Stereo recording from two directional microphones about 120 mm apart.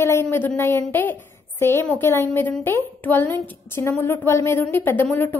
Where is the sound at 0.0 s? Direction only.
20° left (ahead or behind).